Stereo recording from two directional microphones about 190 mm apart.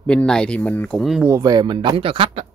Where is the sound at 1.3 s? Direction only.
20° right (ahead or behind).